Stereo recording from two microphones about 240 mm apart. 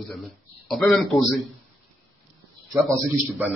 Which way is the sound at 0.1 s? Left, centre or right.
Centre.